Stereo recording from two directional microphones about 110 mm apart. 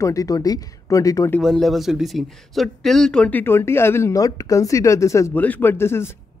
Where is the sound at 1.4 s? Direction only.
5° left (ahead or behind); by 5.3 s 25° left (ahead or behind).